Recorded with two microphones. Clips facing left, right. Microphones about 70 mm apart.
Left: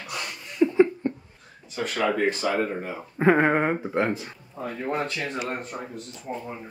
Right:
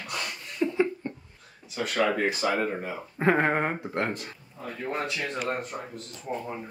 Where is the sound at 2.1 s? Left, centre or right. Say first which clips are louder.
Left 2 dB; centre.